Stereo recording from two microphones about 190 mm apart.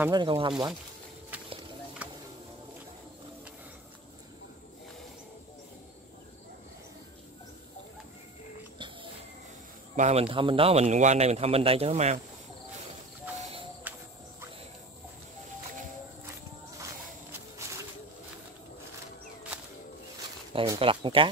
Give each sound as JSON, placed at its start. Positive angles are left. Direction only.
{"t": 0.1, "sound": "speech", "side_deg": -25}
{"t": 9.9, "sound": "a man's voice", "side_deg": -35}
{"t": 20.5, "sound": "speech", "side_deg": -25}